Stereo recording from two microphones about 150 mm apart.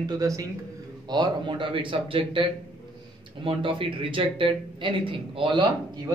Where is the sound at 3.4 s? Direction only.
35° right (ahead or behind).